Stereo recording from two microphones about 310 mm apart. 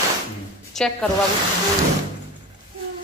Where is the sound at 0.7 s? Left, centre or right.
Centre.